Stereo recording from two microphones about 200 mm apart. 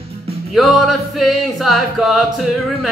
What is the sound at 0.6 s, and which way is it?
A man's voice, centre (ahead or behind).